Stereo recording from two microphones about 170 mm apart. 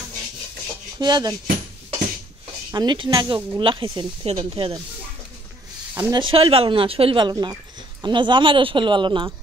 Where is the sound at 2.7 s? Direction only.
25° right (ahead or behind).